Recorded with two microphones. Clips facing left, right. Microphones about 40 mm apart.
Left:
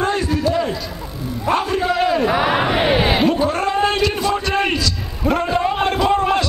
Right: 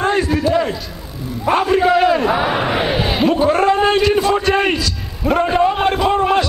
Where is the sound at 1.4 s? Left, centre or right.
Centre.